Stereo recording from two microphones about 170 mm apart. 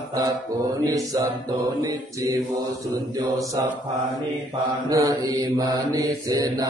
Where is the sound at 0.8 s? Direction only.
20° right (ahead or behind).